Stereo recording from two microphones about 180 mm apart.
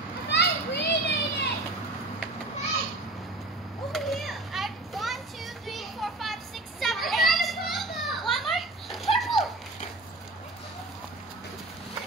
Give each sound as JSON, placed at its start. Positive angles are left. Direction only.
{"t": 0.3, "sound": "children playing", "side_deg": 65}
{"t": 3.9, "sound": "children playing", "side_deg": 0}